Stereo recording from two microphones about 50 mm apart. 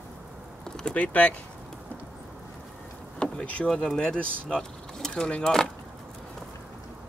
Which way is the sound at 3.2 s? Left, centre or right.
Left.